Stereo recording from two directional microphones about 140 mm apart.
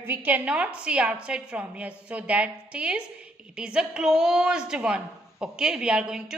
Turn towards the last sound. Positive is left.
turn(degrees=-5)  # may be behind; listen again after turning